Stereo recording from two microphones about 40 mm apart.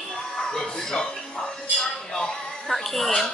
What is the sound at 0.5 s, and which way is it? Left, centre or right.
Speech, centre.